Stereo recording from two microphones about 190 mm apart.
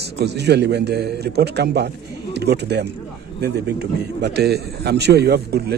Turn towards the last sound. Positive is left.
turn(degrees=-60)  # may be behind; listen again after turning